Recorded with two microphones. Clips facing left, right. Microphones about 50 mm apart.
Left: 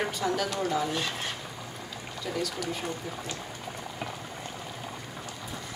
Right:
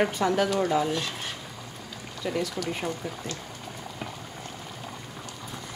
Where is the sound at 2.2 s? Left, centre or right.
Right.